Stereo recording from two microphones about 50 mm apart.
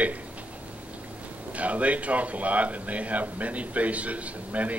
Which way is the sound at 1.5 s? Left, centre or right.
Right.